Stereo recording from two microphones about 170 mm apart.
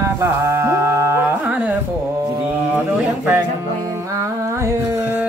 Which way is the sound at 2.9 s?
10° right (ahead or behind).